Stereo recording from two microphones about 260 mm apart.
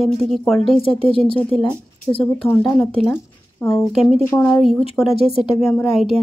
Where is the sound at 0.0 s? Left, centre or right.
Centre.